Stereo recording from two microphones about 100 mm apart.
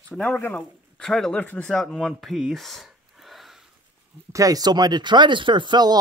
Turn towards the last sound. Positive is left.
turn(degrees=-45)  # may be behind; listen again after turning